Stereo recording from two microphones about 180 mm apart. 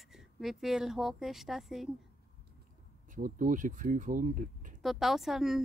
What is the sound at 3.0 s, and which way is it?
Speech, 45° right (ahead or behind).